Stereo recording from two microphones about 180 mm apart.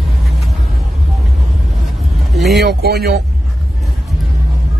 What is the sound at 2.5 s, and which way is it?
Speech, 60° right (ahead or behind).